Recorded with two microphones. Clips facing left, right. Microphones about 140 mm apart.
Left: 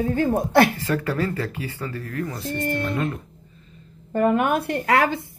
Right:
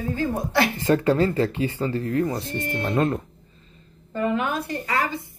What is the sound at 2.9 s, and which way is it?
Speech, 40° right (ahead or behind).